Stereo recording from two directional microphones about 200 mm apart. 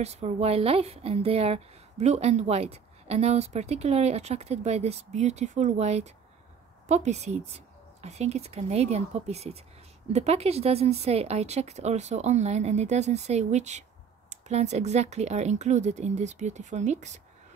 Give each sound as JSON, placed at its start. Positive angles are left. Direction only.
{"t": 0.0, "sound": "a woman's voice", "side_deg": -30}